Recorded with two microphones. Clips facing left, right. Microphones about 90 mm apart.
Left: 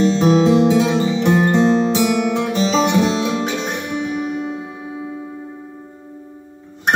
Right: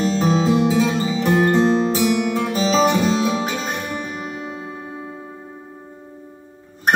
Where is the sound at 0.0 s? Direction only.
Centre (ahead or behind).